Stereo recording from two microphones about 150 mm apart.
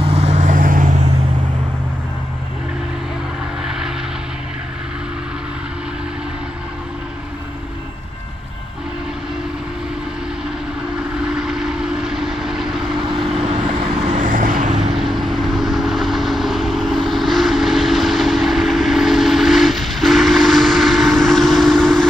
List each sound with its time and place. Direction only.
0.0 s vehicle: 45° right (ahead or behind); by 0.9 s 65° right (ahead or behind)
11.3 s vehicle: 5° right (ahead or behind)
12.9 s vehicle: 35° right (ahead or behind)
14.0 s vehicle: 55° right (ahead or behind)
15.0 s vehicle: centre (ahead or behind)